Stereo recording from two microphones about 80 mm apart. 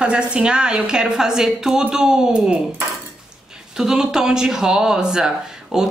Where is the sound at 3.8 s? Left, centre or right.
Centre.